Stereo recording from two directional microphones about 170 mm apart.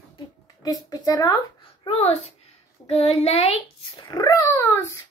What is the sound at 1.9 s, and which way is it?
Speech, 40° left (ahead or behind).